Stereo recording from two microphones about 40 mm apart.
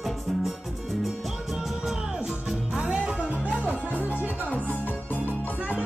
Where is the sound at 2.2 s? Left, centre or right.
Centre.